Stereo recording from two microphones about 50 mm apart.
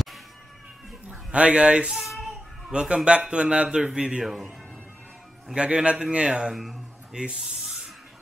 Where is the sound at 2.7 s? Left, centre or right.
Right.